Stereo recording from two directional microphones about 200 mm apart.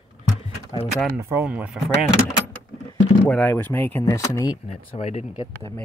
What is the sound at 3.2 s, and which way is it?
Speech, 5° left (ahead or behind).